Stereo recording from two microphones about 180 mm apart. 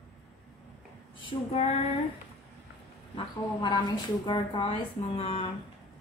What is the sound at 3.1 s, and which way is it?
A woman's voice, 25° left (ahead or behind).